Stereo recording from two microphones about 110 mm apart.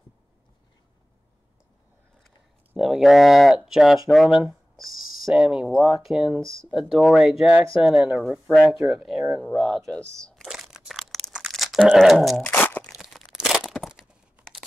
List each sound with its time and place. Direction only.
2.8 s speech: 5° right (ahead or behind)
9.4 s crumpling: 5° left (ahead or behind)
12.4 s crunch: 15° left (ahead or behind)
12.9 s a sound: 5° right (ahead or behind)
14.4 s tearing: centre (ahead or behind)